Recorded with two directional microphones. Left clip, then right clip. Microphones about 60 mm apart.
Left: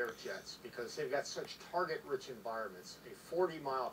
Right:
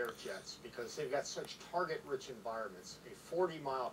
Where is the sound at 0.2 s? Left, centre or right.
Left.